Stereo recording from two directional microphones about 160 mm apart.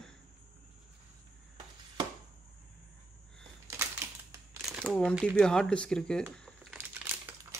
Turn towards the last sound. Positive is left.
turn(degrees=-10)  # may be behind; listen again after turning